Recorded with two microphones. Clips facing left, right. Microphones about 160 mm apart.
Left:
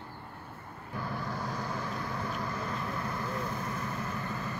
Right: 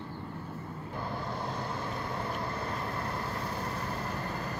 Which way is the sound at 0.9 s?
30° right (ahead or behind).